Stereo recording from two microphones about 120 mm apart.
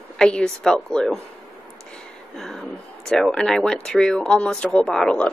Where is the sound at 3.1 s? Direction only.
5° left (ahead or behind).